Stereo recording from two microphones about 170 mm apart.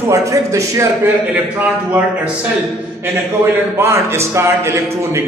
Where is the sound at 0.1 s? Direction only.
20° right (ahead or behind).